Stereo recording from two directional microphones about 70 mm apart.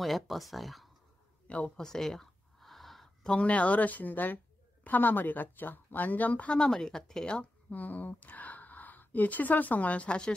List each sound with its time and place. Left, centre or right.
0.0 s speech: centre
1.5 s speech: centre
1.9 s a sound: centre
3.3 s speech: centre
7.7 s speech: left